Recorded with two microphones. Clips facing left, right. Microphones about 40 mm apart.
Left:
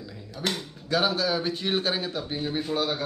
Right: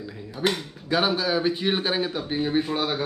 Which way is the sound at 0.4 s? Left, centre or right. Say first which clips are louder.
Right 5 dB; centre.